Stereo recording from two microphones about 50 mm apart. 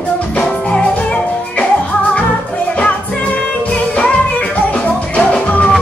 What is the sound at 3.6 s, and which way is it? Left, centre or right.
Music, left.